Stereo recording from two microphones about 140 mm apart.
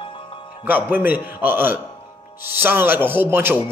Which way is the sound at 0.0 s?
35° left (ahead or behind).